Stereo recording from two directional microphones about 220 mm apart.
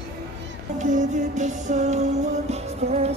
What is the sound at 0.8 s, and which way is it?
Music, 35° right (ahead or behind).